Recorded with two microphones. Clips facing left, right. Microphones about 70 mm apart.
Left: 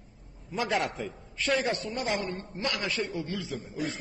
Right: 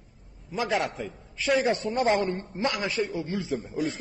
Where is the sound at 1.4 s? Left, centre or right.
Centre.